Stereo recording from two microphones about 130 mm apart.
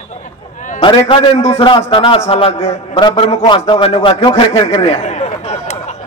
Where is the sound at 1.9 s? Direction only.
45° left (ahead or behind).